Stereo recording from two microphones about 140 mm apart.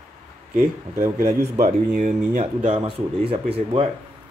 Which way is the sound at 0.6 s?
20° right (ahead or behind).